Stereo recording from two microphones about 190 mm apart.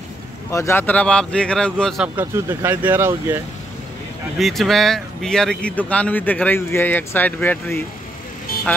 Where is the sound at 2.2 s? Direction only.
10° right (ahead or behind).